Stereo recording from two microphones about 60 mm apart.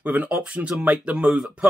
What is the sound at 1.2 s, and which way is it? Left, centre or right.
Speech, centre.